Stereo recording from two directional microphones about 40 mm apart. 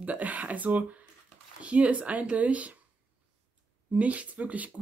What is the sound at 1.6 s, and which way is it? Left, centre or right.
Speech, right.